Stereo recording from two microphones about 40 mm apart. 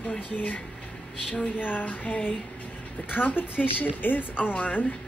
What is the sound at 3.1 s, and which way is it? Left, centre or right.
A woman's voice, left.